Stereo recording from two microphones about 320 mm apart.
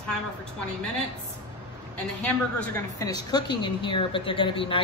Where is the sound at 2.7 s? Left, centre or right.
Centre.